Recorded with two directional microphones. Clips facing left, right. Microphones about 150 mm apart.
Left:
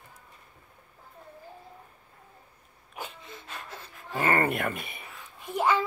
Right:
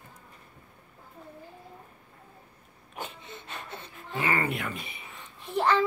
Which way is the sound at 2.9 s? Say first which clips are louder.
Right 1 dB; centre (ahead or behind).